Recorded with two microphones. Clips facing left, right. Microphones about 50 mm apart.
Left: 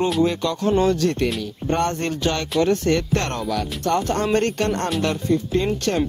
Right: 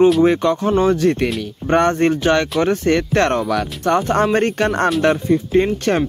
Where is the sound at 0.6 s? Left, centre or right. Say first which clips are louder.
Right 2 dB; right.